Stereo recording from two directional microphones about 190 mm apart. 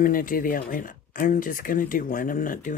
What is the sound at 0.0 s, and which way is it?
Speech, 45° left (ahead or behind).